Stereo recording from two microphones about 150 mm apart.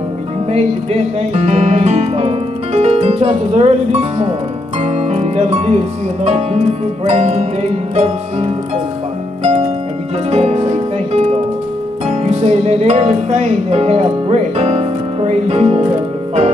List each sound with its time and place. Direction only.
1.3 s music: 45° right (ahead or behind)
4.8 s speech: 45° right (ahead or behind)
7.1 s music: 45° right (ahead or behind)